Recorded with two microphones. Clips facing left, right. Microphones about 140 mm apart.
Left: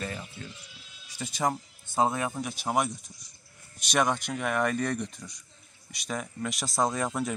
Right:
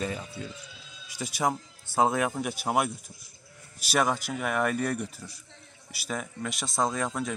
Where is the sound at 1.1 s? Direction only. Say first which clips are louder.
Right 1 dB; 10° right (ahead or behind).